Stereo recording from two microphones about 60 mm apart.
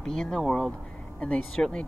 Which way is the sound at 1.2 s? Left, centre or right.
Left.